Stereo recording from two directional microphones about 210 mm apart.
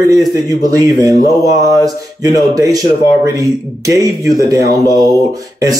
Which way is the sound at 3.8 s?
15° right (ahead or behind).